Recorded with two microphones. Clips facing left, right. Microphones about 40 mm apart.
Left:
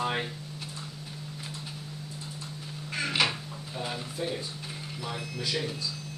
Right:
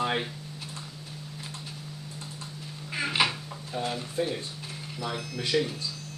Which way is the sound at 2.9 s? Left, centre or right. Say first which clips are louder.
Right 1 dB; centre.